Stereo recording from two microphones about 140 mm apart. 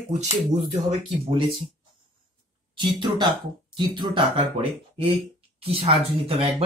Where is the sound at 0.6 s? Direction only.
55° right (ahead or behind).